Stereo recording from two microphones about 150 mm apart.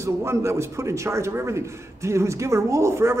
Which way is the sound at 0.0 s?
20° right (ahead or behind).